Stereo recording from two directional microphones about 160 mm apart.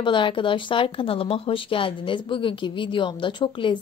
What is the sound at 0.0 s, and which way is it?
Speech, 30° left (ahead or behind).